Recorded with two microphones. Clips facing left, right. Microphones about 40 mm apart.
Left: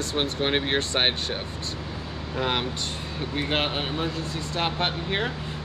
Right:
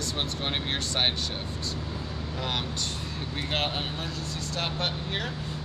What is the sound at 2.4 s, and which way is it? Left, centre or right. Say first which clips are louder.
Speech: left 6 dB; left.